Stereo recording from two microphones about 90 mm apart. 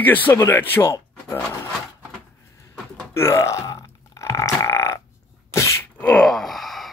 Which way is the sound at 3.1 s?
35° left (ahead or behind).